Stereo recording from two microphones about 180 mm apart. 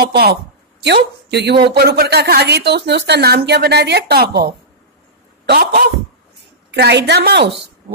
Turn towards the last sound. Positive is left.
turn(degrees=-65)  # may be behind; listen again after turning